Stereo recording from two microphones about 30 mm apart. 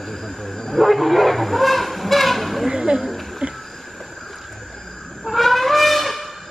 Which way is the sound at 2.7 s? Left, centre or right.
Right.